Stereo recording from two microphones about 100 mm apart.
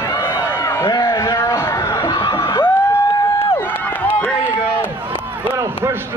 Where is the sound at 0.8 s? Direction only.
55° left (ahead or behind).